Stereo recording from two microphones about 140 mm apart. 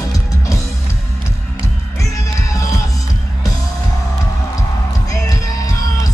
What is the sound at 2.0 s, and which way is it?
Music, 25° left (ahead or behind).